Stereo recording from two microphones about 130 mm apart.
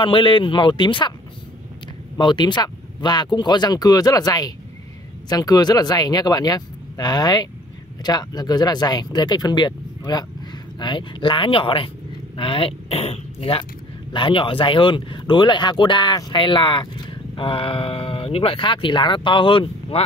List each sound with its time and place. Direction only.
0.0 s speech: 40° left (ahead or behind)
2.1 s speech: 35° left (ahead or behind)